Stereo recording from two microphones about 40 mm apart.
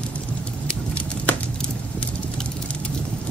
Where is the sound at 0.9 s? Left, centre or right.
Left.